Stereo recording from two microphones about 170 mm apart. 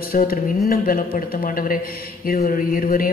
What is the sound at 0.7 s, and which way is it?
A man's voice, 55° left (ahead or behind).